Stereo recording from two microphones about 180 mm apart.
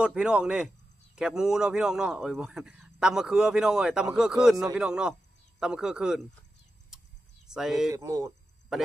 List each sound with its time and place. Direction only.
0.0 s a man's voice: 5° right (ahead or behind)
7.4 s speech: 5° right (ahead or behind)
7.9 s speech: 20° right (ahead or behind)